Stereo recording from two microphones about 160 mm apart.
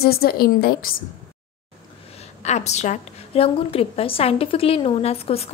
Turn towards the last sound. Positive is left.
turn(degrees=40)  # may be behind; listen again after turning